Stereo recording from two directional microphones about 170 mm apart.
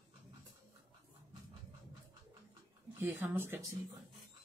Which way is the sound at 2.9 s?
15° right (ahead or behind).